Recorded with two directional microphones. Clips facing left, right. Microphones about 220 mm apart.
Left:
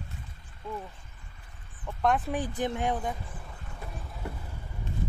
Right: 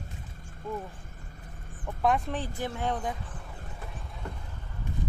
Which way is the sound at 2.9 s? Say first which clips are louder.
Even; 5° left (ahead or behind).